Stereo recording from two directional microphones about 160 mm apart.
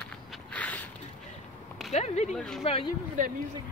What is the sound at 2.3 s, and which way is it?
Speech, 5° left (ahead or behind).